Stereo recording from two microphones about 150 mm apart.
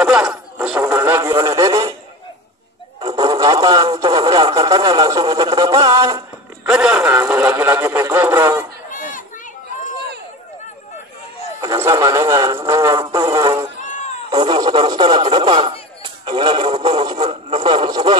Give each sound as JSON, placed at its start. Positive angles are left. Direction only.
{"t": 0.0, "sound": "a sound", "side_deg": -5}
{"t": 1.3, "sound": "speech", "side_deg": -20}
{"t": 3.0, "sound": "speech", "side_deg": -30}
{"t": 6.6, "sound": "a man's voice", "side_deg": -5}
{"t": 8.9, "sound": "children playing", "side_deg": 60}
{"t": 11.6, "sound": "speech", "side_deg": -20}
{"t": 13.0, "sound": "speech", "side_deg": -30}
{"t": 13.7, "sound": "cat", "side_deg": 55}
{"t": 14.3, "sound": "speech", "side_deg": -30}